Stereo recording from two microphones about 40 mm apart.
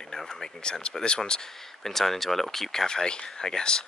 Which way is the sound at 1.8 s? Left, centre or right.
Centre.